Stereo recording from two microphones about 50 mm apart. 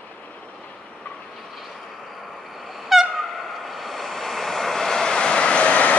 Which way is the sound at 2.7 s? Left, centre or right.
Centre.